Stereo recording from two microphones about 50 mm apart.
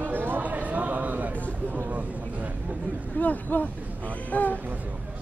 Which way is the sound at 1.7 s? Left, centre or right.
Right.